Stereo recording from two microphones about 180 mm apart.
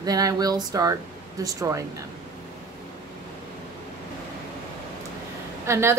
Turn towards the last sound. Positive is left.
turn(degrees=-15)  # may be behind; listen again after turning